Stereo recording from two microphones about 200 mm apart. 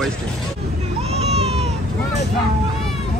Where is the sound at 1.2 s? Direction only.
30° right (ahead or behind).